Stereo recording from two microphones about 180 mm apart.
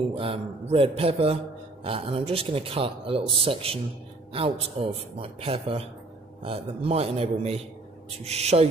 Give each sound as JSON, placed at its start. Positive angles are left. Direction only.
{"t": 0.1, "sound": "a man's voice", "side_deg": -35}